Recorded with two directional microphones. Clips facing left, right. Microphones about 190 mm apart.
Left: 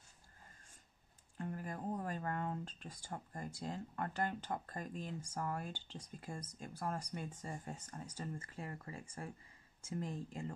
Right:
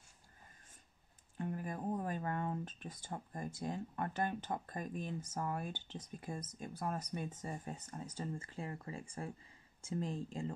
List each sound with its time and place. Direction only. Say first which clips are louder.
1.4 s speech: right 3 dB; 20° right (ahead or behind)